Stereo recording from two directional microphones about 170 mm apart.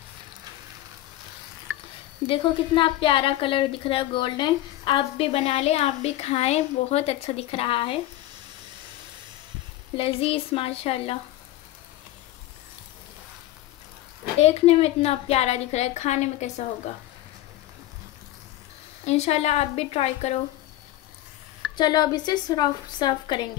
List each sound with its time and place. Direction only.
2.2 s a woman's voice: 30° left (ahead or behind)
9.9 s a woman's voice: 35° left (ahead or behind)
14.4 s a woman's voice: 40° left (ahead or behind)
19.0 s a woman's voice: 40° left (ahead or behind)
21.7 s a woman's voice: 25° left (ahead or behind)